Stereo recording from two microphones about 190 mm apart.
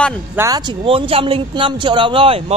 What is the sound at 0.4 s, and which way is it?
A man's voice, 20° right (ahead or behind).